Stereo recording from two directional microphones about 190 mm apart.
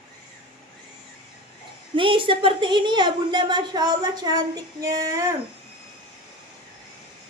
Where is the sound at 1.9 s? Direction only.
25° right (ahead or behind).